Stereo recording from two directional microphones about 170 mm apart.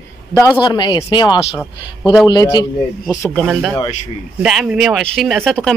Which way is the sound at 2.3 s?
25° left (ahead or behind).